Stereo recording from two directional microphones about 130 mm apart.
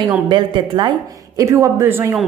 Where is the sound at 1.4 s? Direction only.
20° right (ahead or behind).